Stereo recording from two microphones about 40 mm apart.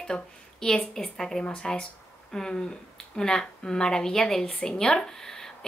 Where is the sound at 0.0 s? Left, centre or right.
Centre.